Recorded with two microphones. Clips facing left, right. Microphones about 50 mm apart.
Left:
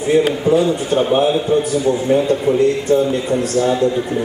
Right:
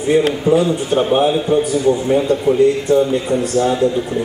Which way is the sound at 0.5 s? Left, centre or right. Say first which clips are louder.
Even; centre.